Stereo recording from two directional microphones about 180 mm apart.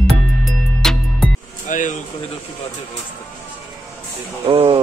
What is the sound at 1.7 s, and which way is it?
Speech, 45° left (ahead or behind).